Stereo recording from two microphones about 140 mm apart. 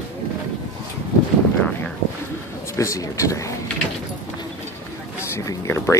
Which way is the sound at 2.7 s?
20° left (ahead or behind).